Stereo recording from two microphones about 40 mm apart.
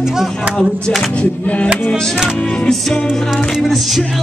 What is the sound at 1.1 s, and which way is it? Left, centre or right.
Music, left.